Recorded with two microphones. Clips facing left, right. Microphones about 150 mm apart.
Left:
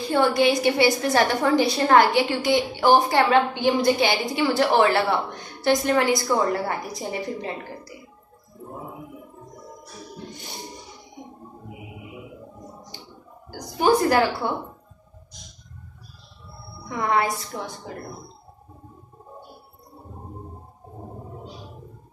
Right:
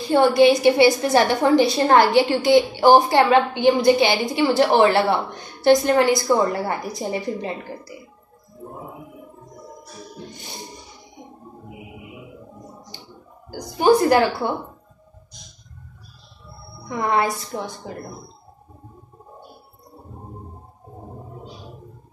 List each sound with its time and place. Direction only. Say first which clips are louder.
0.1 s a woman's voice: right 5 dB; 25° right (ahead or behind)
13.7 s a woman's voice: right 3 dB; 25° right (ahead or behind)
17.0 s a woman's voice: right 2 dB; 30° right (ahead or behind)